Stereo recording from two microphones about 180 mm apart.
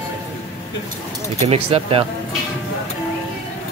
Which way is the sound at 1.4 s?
35° right (ahead or behind).